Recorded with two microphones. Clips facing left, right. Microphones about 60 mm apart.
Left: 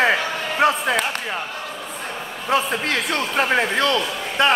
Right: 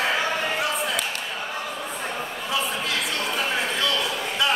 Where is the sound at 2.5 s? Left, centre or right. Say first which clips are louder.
Left 7 dB; left.